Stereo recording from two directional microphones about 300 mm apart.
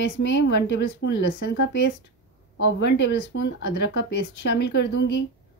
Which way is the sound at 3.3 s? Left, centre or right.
Left.